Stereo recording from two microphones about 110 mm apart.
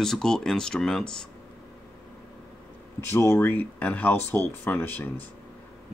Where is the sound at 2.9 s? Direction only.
25° left (ahead or behind).